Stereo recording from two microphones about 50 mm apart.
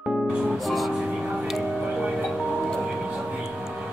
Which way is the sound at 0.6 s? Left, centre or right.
Centre.